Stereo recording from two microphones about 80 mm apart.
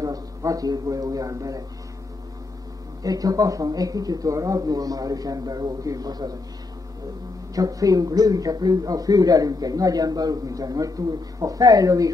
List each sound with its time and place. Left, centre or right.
0.0 s a man's voice: right
3.0 s speech: right
7.5 s speech: right